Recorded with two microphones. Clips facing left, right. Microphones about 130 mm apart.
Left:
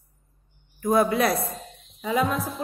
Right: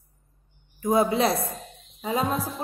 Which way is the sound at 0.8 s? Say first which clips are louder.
Left 1 dB; 25° right (ahead or behind).